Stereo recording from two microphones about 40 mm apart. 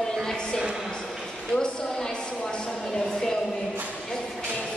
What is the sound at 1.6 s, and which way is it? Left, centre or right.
A woman's voice, centre.